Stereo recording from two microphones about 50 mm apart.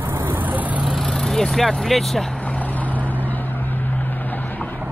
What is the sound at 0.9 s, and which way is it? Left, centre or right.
Speech, centre.